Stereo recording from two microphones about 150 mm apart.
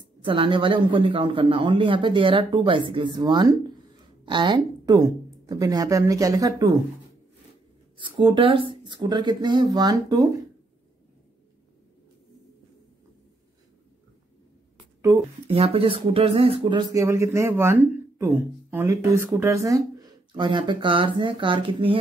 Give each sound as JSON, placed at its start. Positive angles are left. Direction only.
{"t": 0.2, "sound": "a man's voice", "side_deg": -35}
{"t": 8.0, "sound": "speech", "side_deg": -35}
{"t": 15.0, "sound": "speech", "side_deg": -20}
{"t": 15.4, "sound": "a man's voice", "side_deg": -40}
{"t": 17.0, "sound": "speech", "side_deg": -20}